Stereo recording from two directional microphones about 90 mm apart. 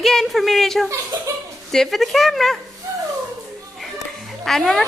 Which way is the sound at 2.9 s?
35° right (ahead or behind).